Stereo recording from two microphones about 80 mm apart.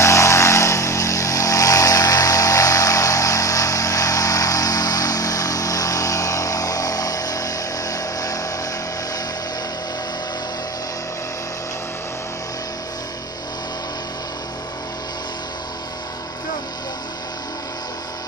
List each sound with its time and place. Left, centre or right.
0.0 s vehicle: left